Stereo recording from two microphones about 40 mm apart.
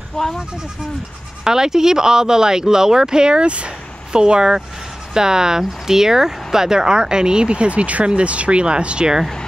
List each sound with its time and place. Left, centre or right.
0.2 s speech: centre
1.4 s speech: centre